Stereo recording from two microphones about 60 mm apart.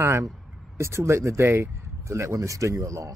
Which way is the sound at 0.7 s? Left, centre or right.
Right.